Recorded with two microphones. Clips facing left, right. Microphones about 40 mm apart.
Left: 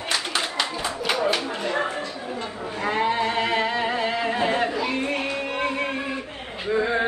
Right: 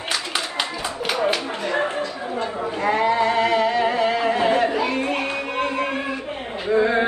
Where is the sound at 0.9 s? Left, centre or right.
Right.